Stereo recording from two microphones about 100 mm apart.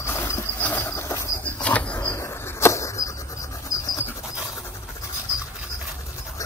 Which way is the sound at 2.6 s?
30° left (ahead or behind).